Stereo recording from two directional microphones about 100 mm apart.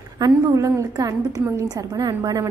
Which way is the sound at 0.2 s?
35° right (ahead or behind).